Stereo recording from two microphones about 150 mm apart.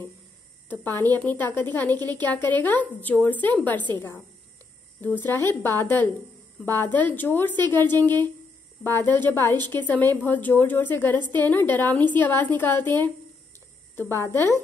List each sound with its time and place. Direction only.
0.7 s a woman's voice: 10° left (ahead or behind)
5.2 s a woman's voice: 15° left (ahead or behind)